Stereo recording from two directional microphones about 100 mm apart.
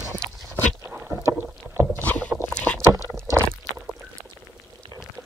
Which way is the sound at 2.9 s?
30° right (ahead or behind).